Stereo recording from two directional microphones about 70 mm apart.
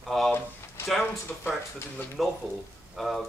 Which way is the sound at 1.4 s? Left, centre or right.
Left.